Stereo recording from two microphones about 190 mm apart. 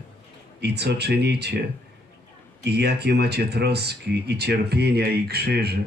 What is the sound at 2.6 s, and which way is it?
Speech, 60° right (ahead or behind).